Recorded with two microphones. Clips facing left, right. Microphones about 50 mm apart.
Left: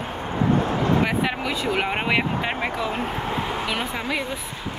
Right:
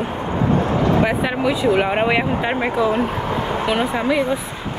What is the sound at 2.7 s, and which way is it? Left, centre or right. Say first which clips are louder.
Speech: right 7 dB; right.